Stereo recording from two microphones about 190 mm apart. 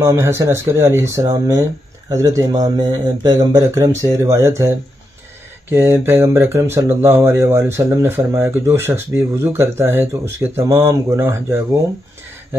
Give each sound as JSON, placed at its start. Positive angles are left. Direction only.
{"t": 0.0, "sound": "speech", "side_deg": -15}